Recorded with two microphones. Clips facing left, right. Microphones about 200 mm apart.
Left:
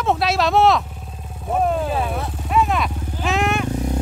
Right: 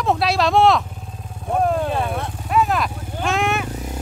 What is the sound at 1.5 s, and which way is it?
Vehicle, centre (ahead or behind).